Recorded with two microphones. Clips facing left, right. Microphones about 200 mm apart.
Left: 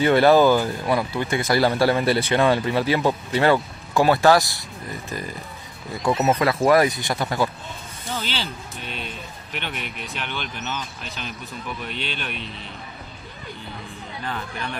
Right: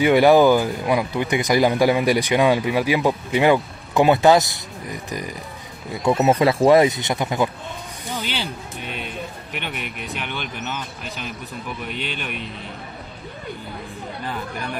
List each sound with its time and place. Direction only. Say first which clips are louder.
0.0 s speech: right 2 dB; 15° right (ahead or behind)
6.3 s speech: right 4 dB; 30° right (ahead or behind); by 12.4 s 10° right (ahead or behind)
14.2 s speech: right 1 dB; 10° right (ahead or behind)